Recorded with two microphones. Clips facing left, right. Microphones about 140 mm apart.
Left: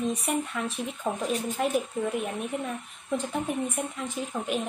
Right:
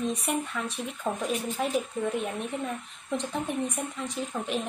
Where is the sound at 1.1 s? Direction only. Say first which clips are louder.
Even; 15° left (ahead or behind).